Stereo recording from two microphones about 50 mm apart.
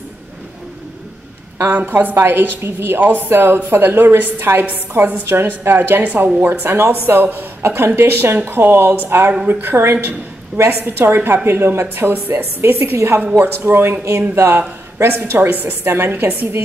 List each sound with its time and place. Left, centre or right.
1.6 s a woman's voice: right
7.1 s a woman's voice: right
7.6 s a woman's voice: right
13.4 s a woman's voice: right
15.1 s a woman's voice: right
15.6 s a woman's voice: right